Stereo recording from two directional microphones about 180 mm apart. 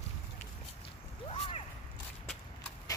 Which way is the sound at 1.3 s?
35° left (ahead or behind).